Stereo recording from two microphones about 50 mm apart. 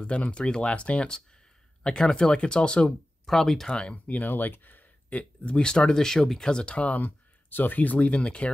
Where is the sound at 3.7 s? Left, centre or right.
Left.